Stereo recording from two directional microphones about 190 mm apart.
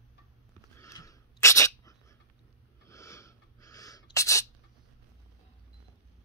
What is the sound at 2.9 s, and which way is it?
Sneeze, 15° left (ahead or behind).